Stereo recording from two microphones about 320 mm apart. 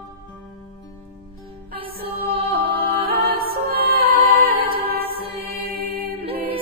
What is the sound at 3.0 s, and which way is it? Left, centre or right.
Music, right.